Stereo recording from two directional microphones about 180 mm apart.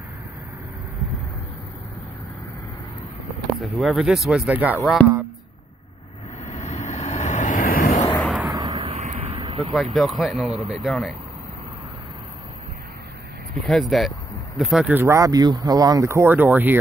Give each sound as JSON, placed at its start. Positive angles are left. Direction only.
{"t": 3.6, "sound": "speech", "side_deg": 0}
{"t": 6.4, "sound": "vehicle", "side_deg": 40}
{"t": 8.2, "sound": "a sound", "side_deg": 0}
{"t": 8.7, "sound": "a sound", "side_deg": -35}
{"t": 9.8, "sound": "speech", "side_deg": 0}
{"t": 13.7, "sound": "speech", "side_deg": 0}